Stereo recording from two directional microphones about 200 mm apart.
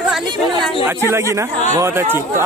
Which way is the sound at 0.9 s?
15° right (ahead or behind).